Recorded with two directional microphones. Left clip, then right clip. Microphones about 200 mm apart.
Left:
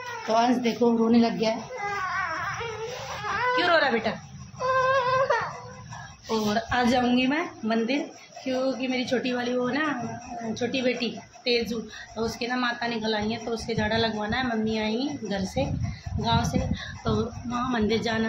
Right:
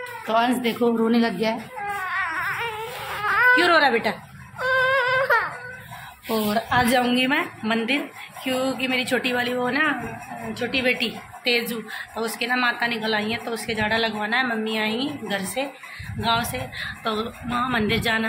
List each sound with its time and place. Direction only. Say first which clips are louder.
0.3 s speech: right 2 dB; 5° right (ahead or behind)
3.3 s a sound: right 9 dB; 5° right (ahead or behind)
3.5 s a woman's voice: right 5 dB; 30° right (ahead or behind)
4.7 s whimper: right 3 dB; 5° right (ahead or behind)
6.2 s speech: right 3 dB; 15° right (ahead or behind)
7.2 s a woman's voice: right 4 dB; centre (ahead or behind)